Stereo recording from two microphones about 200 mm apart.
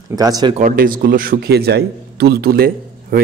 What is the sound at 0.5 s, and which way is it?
A man's voice, 40° right (ahead or behind).